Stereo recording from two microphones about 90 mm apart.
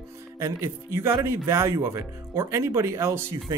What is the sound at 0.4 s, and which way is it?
Speech, 30° right (ahead or behind).